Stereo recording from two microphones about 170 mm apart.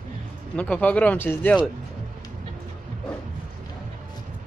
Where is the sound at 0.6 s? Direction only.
5° left (ahead or behind).